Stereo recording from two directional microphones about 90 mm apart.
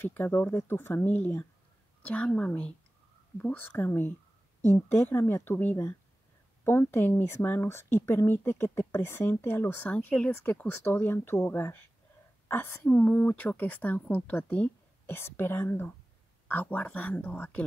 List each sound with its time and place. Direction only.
0.0 s a woman's voice: 20° left (ahead or behind)
5.1 s a woman's voice: 25° left (ahead or behind)